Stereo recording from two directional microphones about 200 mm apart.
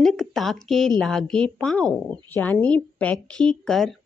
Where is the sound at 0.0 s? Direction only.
Centre (ahead or behind).